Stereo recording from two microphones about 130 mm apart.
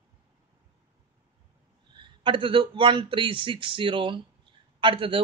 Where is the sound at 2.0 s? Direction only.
40° right (ahead or behind).